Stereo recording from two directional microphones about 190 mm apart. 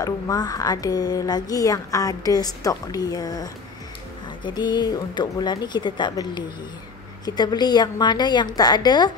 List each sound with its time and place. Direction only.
0.0 s a woman's voice: 20° left (ahead or behind)